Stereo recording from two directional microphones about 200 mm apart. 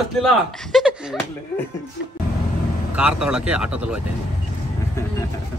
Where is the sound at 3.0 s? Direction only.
5° right (ahead or behind).